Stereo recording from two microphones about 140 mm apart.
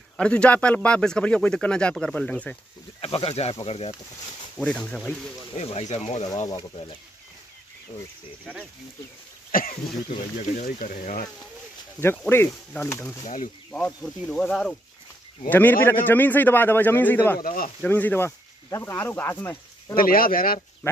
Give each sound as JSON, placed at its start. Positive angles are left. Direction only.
{"t": 0.2, "sound": "a man's voice", "side_deg": 10}
{"t": 3.0, "sound": "speech", "side_deg": 45}
{"t": 4.6, "sound": "a man's voice", "side_deg": 10}
{"t": 5.6, "sound": "speech", "side_deg": 45}
{"t": 6.2, "sound": "speech", "side_deg": 25}
{"t": 9.5, "sound": "speech", "side_deg": 85}
{"t": 10.0, "sound": "speech", "side_deg": 65}
{"t": 12.3, "sound": "a man's voice", "side_deg": 15}
{"t": 17.4, "sound": "speech", "side_deg": 85}
{"t": 17.8, "sound": "speech", "side_deg": 10}
{"t": 20.0, "sound": "speech", "side_deg": 90}